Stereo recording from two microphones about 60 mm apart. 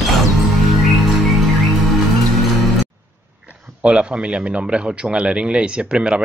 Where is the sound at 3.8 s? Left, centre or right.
Centre.